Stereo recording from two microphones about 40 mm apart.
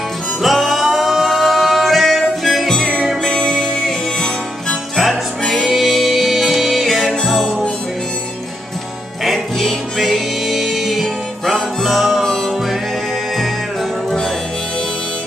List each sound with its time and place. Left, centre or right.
0.4 s music: centre
4.9 s music: centre
9.2 s music: centre